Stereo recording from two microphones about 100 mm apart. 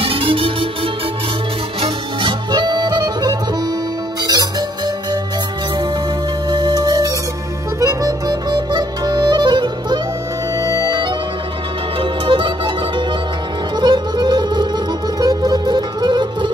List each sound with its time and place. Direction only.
0.0 s music: 65° right (ahead or behind)
1.8 s music: 50° right (ahead or behind)
6.5 s music: 45° right (ahead or behind)
10.6 s music: 35° right (ahead or behind)
12.0 s music: 55° right (ahead or behind)